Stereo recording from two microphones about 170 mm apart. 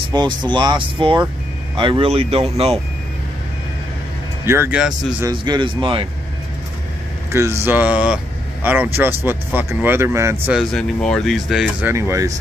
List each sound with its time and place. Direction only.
0.1 s speech: 25° right (ahead or behind)
4.5 s speech: 10° right (ahead or behind)
5.3 s speech: 30° right (ahead or behind)
7.3 s speech: 15° right (ahead or behind)
10.4 s speech: centre (ahead or behind)
11.8 s speech: 15° right (ahead or behind)